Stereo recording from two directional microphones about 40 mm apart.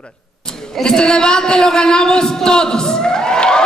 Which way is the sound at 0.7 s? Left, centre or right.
Centre.